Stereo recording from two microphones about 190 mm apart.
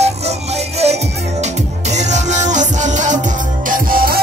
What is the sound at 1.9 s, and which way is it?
Music, 40° right (ahead or behind).